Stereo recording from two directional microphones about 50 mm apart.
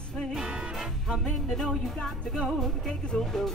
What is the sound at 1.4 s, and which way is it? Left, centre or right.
Speech, centre.